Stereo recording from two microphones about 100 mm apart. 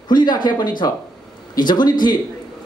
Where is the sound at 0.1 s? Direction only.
45° left (ahead or behind).